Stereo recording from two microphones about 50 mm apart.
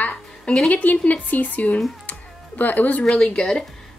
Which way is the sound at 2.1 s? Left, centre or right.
Left.